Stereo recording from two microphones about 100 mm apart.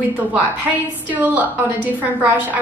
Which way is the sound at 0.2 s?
15° right (ahead or behind).